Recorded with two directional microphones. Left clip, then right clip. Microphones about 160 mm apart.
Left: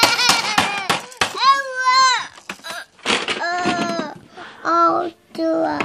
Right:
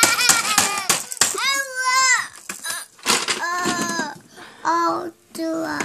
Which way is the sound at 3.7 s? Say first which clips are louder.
Left 2 dB; 15° right (ahead or behind).